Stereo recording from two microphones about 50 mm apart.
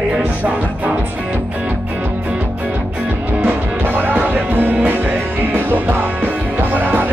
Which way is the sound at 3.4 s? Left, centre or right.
Right.